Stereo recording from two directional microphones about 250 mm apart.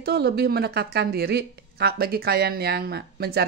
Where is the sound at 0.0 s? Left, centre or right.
Right.